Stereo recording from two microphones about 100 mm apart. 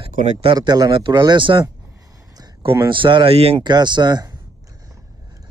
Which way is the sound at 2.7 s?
55° right (ahead or behind).